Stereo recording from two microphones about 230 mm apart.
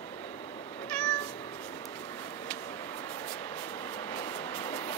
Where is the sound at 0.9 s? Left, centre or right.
Centre.